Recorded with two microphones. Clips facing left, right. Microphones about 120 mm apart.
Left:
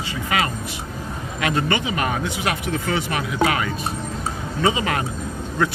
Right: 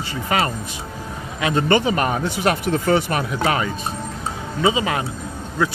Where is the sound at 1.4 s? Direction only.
25° right (ahead or behind).